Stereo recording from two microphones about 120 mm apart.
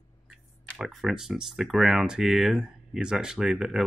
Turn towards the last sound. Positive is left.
turn(degrees=-5)  # may be behind; listen again after turning